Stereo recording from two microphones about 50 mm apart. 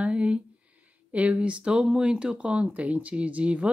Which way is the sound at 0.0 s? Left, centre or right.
Right.